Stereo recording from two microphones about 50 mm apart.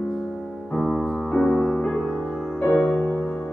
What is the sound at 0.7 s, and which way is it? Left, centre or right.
Music, centre.